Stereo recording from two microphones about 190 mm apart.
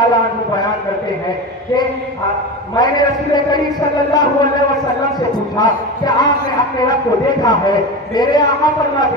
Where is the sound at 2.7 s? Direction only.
20° left (ahead or behind).